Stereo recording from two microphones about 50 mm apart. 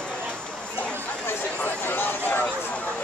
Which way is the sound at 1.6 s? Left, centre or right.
Left.